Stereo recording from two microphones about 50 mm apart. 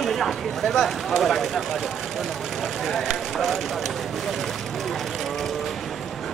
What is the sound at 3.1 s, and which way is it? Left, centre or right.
Speech, centre.